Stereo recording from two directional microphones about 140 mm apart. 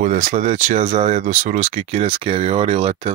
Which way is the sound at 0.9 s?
50° right (ahead or behind).